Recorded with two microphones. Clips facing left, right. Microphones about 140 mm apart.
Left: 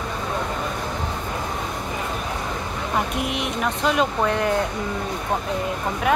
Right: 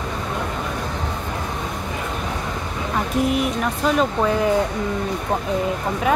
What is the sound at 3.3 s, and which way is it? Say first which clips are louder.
Speech: right 3 dB; centre (ahead or behind).